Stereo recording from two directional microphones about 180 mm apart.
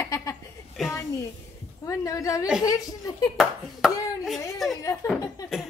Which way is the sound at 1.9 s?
20° left (ahead or behind).